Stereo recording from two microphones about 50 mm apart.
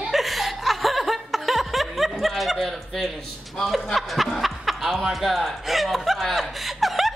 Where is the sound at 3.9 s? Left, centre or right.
Centre.